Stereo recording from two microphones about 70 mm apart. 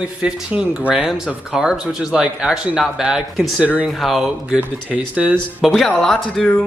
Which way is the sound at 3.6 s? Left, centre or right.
Centre.